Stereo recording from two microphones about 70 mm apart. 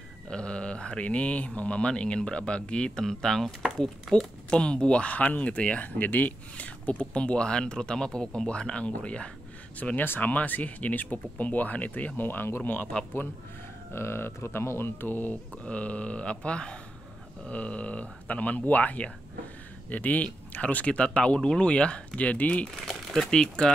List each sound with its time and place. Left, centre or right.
0.3 s speech: centre; by 12.8 s left
13.9 s speech: left; by 22.7 s centre
22.8 s speech: centre